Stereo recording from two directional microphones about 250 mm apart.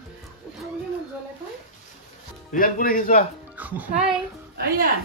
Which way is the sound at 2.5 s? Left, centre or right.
Left.